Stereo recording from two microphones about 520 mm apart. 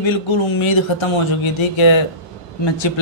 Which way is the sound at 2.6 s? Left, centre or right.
Left.